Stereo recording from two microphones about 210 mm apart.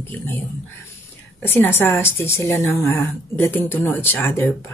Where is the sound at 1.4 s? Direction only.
10° left (ahead or behind).